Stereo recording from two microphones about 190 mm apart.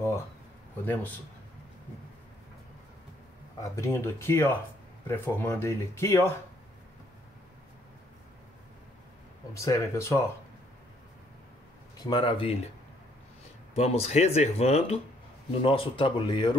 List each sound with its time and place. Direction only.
3.6 s speech: 15° left (ahead or behind)
9.5 s speech: 15° left (ahead or behind)
12.0 s speech: 25° left (ahead or behind)
13.7 s speech: 35° left (ahead or behind)